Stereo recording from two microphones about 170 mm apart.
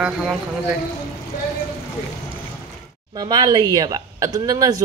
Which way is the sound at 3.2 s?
25° right (ahead or behind).